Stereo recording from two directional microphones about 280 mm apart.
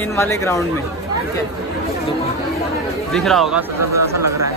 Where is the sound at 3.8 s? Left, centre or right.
Right.